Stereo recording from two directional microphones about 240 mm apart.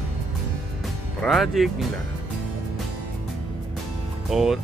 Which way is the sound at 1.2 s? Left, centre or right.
Centre.